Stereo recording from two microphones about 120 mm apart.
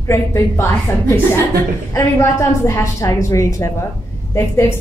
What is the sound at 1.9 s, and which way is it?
A woman's voice, 20° left (ahead or behind).